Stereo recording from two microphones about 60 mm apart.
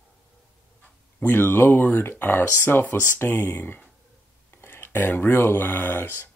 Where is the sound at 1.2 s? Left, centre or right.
Left.